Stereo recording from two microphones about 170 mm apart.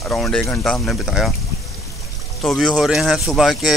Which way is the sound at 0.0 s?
5° left (ahead or behind).